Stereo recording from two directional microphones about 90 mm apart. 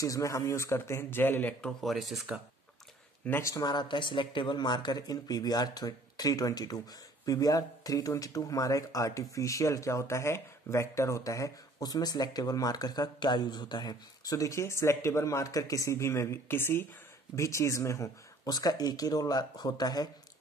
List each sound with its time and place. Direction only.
0.0 s speech: 35° left (ahead or behind); by 1.7 s 20° left (ahead or behind)
1.7 s speech: centre (ahead or behind)
3.3 s a man's voice: 30° left (ahead or behind)
3.5 s speech: 50° left (ahead or behind)